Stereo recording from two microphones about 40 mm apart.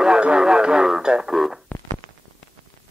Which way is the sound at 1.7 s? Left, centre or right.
Left.